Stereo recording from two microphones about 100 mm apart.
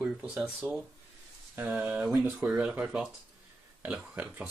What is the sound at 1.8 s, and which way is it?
Speech, 10° right (ahead or behind).